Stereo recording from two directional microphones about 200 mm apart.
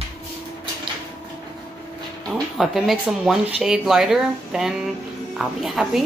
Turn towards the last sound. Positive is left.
turn(degrees=0)  # may be behind; listen again after turning